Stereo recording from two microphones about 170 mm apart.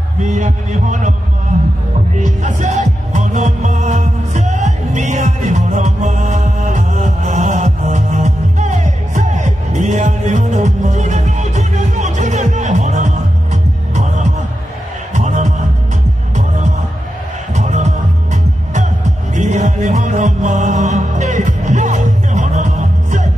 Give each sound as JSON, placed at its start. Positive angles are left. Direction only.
{"t": 0.2, "sound": "heart sounds", "side_deg": -45}
{"t": 2.1, "sound": "music", "side_deg": -45}
{"t": 15.1, "sound": "heart sounds", "side_deg": -45}
{"t": 17.6, "sound": "music", "side_deg": -45}